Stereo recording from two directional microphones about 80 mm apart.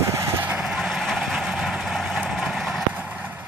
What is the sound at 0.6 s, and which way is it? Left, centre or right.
Vehicle, centre.